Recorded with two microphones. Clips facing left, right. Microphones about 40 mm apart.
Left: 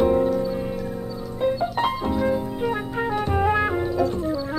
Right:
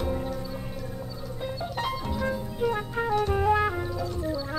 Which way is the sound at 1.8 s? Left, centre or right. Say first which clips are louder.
Left 3 dB; left.